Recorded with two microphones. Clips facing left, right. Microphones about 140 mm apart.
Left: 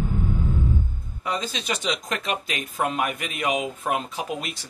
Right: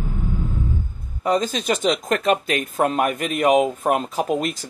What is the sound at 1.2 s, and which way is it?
Speech, 45° right (ahead or behind).